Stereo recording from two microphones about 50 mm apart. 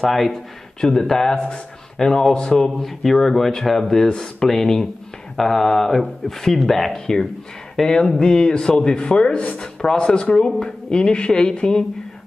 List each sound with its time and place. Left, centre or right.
0.0 s a man's voice: centre
0.7 s a man's voice: centre
2.8 s a man's voice: centre
7.7 s a sound: centre
8.2 s speech: centre